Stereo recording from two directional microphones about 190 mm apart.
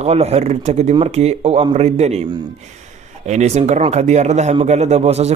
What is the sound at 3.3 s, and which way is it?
Speech, 35° right (ahead or behind).